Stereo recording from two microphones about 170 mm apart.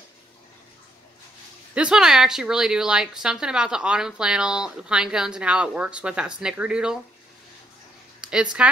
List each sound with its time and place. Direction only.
1.8 s a woman's voice: 5° right (ahead or behind)
8.2 s speech: 5° right (ahead or behind)